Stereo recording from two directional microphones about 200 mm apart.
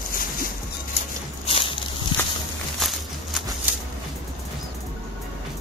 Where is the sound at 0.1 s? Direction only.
45° left (ahead or behind).